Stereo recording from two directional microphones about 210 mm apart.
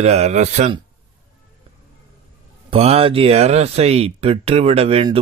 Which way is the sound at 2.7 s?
30° right (ahead or behind).